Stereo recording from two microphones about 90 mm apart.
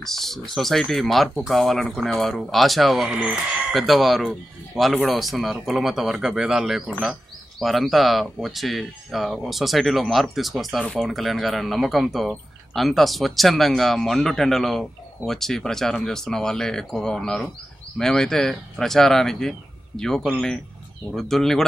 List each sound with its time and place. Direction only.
0.0 s speech: 5° left (ahead or behind)
3.1 s speech: 15° right (ahead or behind)
3.7 s speech: centre (ahead or behind)